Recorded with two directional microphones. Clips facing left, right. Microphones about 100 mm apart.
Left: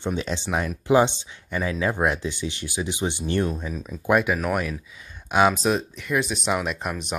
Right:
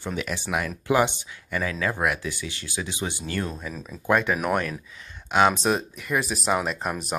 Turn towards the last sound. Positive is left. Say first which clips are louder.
# even
turn(degrees=0)  # may be behind; listen again after turning